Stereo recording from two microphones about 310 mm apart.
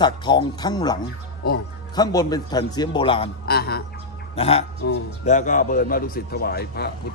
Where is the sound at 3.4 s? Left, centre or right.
Left.